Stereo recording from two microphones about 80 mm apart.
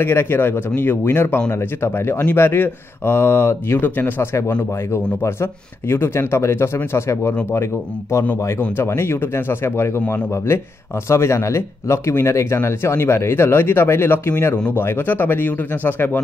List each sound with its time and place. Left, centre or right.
0.0 s speech: left
8.7 s speech: left